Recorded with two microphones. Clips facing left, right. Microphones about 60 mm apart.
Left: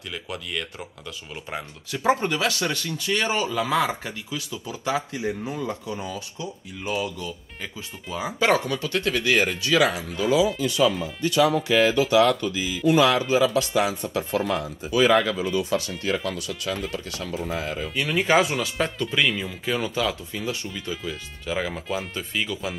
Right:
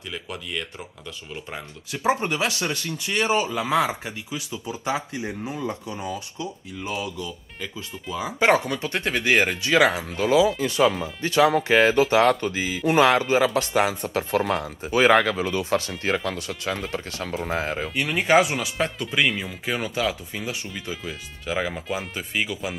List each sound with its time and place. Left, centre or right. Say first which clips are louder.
0.1 s speech: even; centre
1.9 s speech: left 1 dB; right
6.4 s speech: even; left
8.1 s speech: even; left
8.4 s speech: right 2 dB; right
17.9 s speech: right 1 dB; centre
19.6 s speech: even; centre
20.9 s speech: left 1 dB; centre